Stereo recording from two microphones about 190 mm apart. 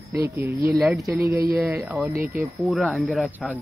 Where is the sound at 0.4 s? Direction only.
15° right (ahead or behind).